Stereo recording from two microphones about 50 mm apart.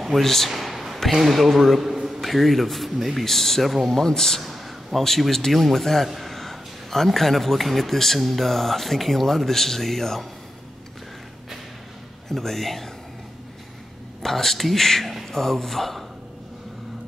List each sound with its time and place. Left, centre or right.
0.0 s a man's voice: centre
0.5 s a sound: centre
1.1 s a man's voice: centre
4.0 s a man's voice: centre
12.3 s a man's voice: centre
14.2 s a man's voice: centre